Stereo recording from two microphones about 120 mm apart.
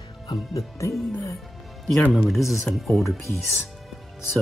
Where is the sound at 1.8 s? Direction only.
Centre (ahead or behind).